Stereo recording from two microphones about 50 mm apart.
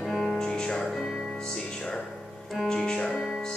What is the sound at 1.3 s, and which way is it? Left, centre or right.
Music, centre.